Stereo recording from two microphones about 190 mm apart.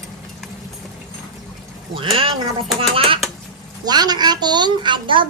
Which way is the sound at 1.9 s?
30° right (ahead or behind).